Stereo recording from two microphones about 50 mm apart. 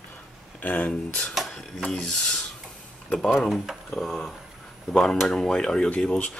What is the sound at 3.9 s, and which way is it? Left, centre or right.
Speech, centre.